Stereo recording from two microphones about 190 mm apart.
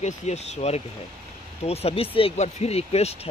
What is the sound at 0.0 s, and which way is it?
Speech, 35° left (ahead or behind).